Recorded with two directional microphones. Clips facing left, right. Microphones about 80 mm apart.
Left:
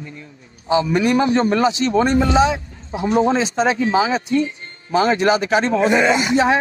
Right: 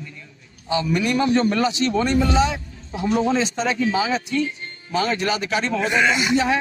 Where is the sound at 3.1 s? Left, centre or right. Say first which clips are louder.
Left 4 dB; left.